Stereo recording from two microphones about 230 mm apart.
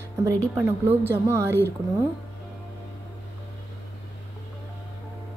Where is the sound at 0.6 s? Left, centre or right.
Centre.